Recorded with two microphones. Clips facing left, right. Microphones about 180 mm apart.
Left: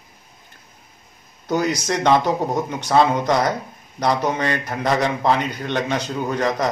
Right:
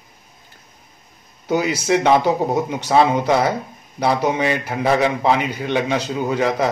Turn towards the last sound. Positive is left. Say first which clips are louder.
# right 2 dB
turn(degrees=-10)  # may be behind; listen again after turning